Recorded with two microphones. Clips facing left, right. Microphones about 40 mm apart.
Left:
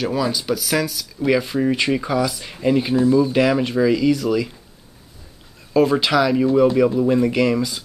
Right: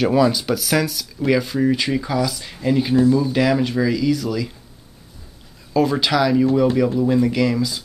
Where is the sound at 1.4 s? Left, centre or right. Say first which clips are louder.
Right 1 dB; centre.